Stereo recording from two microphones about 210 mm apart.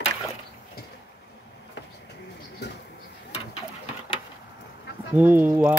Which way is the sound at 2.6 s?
50° left (ahead or behind).